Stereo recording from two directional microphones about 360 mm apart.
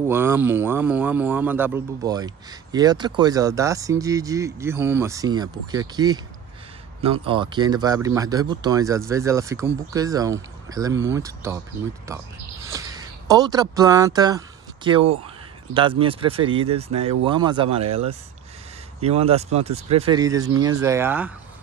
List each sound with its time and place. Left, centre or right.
0.1 s speech: centre
12.6 s speech: centre